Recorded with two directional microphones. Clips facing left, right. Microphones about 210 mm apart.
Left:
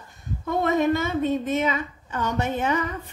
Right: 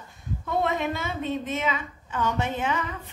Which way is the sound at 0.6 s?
45° left (ahead or behind).